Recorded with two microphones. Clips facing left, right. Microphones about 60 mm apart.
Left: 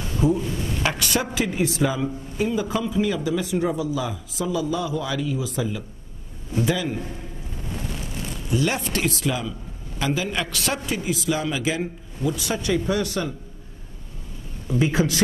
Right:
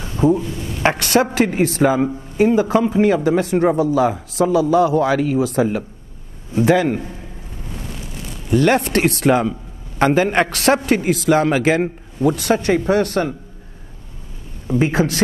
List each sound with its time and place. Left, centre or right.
0.0 s a sound: right
0.8 s a man's voice: right
3.3 s a man's voice: right
8.5 s a man's voice: right
14.8 s a man's voice: right